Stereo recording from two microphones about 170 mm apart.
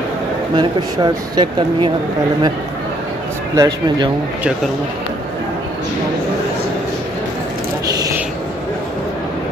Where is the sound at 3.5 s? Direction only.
20° right (ahead or behind).